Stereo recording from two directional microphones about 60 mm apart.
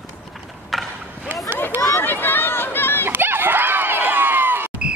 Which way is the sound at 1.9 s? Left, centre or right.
Left.